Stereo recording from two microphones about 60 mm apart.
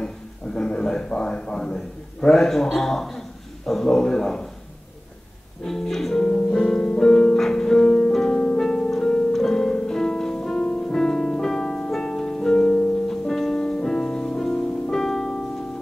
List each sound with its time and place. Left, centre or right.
0.0 s a man's voice: centre
5.6 s music: centre
8.1 s music: centre